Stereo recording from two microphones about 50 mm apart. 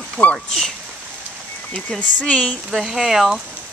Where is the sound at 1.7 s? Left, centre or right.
Centre.